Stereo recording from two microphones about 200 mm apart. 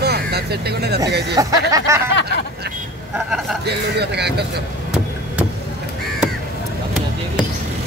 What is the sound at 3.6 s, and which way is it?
Speech, 55° right (ahead or behind).